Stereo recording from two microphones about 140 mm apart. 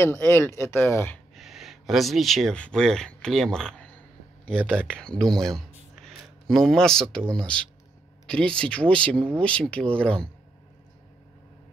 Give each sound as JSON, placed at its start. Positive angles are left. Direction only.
{"t": 0.0, "sound": "speech", "side_deg": 15}
{"t": 1.3, "sound": "speech", "side_deg": 0}